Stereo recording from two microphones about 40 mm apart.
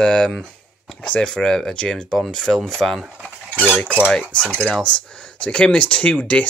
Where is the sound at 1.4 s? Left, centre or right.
Centre.